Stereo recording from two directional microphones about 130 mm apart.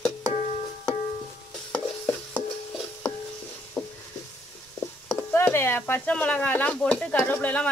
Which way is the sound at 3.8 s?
10° left (ahead or behind).